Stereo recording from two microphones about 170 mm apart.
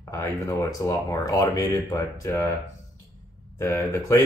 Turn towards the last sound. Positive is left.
turn(degrees=15)  # may be behind; listen again after turning